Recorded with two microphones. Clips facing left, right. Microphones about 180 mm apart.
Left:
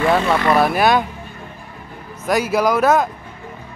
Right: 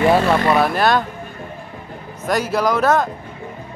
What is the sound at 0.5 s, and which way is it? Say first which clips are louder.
Speech: left 1 dB; 5° left (ahead or behind).